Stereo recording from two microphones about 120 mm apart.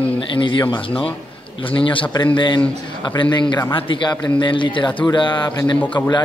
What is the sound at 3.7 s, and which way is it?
A man's voice, 45° left (ahead or behind).